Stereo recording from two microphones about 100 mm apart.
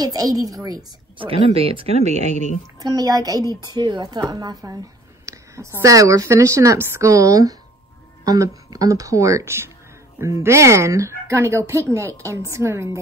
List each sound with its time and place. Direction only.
0.0 s a woman's voice: 40° right (ahead or behind)
1.1 s speech: 70° right (ahead or behind); by 2.2 s 90° right
2.8 s a woman's voice: 35° right (ahead or behind)